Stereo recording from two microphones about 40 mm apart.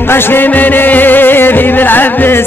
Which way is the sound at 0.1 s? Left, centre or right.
Left.